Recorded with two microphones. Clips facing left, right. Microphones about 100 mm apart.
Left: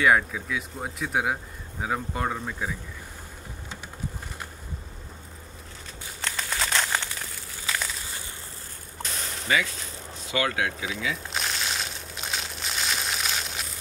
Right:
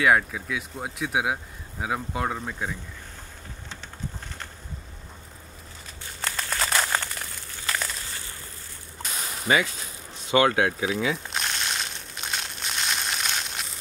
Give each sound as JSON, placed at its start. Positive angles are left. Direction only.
{"t": 0.0, "sound": "speech", "side_deg": 0}
{"t": 6.2, "sound": "crumpling", "side_deg": -5}
{"t": 9.0, "sound": "whip", "side_deg": -10}
{"t": 10.3, "sound": "speech", "side_deg": -35}
{"t": 11.2, "sound": "crushing", "side_deg": 0}